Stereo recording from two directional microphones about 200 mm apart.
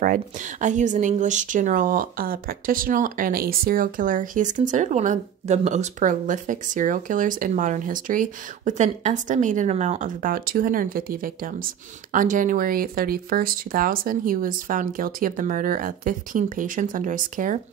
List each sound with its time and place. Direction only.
0.0 s speech: 40° right (ahead or behind)